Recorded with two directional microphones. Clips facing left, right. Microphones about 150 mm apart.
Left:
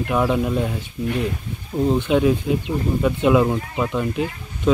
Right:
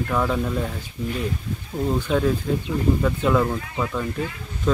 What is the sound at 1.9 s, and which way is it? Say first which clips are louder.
Speech: left 3 dB; 10° left (ahead or behind).